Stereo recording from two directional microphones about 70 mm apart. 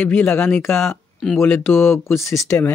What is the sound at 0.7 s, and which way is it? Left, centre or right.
Speech, left.